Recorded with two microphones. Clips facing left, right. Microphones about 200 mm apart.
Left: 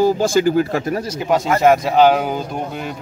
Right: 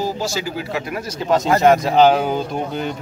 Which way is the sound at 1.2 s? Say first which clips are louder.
Even; 15° left (ahead or behind).